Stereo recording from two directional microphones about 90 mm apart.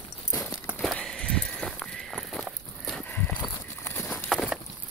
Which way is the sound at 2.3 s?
5° left (ahead or behind).